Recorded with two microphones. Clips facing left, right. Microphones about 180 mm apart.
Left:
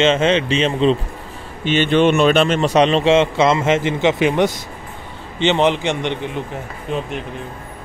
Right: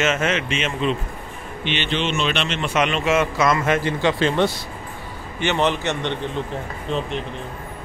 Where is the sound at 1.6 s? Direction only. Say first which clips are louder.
Left 10 dB; 45° left (ahead or behind); by 6.4 s 15° left (ahead or behind).